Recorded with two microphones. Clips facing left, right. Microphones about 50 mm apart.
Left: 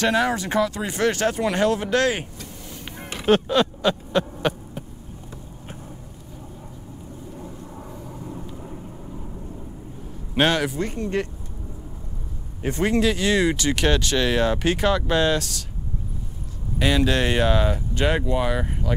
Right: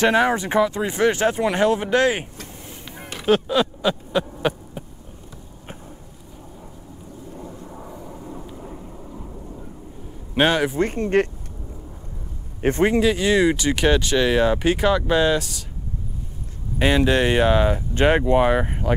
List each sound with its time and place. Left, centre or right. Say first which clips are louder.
0.0 s speech: right 3 dB; right
3.0 s a sound: even; centre
7.3 s thunder: right 3 dB; centre
10.3 s speech: right 2 dB; centre
10.8 s speech: right 6 dB; right
12.8 s speech: right 2 dB; centre
16.7 s speech: right 3 dB; right
17.9 s speech: right 7 dB; right